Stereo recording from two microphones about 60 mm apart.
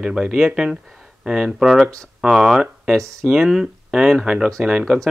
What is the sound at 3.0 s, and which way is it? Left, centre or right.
Speech, right.